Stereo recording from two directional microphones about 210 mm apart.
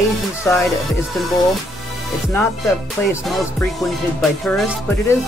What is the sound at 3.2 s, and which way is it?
Music, centre (ahead or behind).